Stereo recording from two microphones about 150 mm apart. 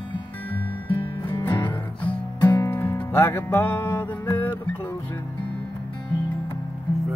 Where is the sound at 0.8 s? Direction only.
35° left (ahead or behind).